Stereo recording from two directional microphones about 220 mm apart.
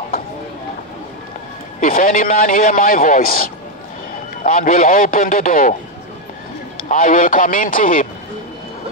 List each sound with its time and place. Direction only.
1.8 s a man's voice: 40° left (ahead or behind)
6.9 s a man's voice: 35° left (ahead or behind)